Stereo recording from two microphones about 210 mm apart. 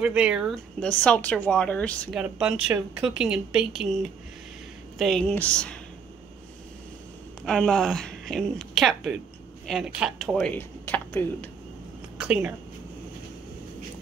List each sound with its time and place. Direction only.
0.0 s speech: 5° right (ahead or behind)
4.9 s speech: centre (ahead or behind)
7.4 s speech: centre (ahead or behind)
12.2 s speech: 5° right (ahead or behind)